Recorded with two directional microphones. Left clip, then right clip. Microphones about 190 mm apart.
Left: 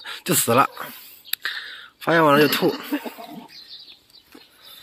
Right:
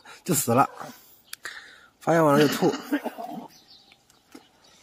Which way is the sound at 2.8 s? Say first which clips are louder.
Even; 5° left (ahead or behind).